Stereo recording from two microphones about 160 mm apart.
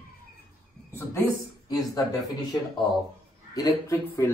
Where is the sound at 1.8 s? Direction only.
20° left (ahead or behind).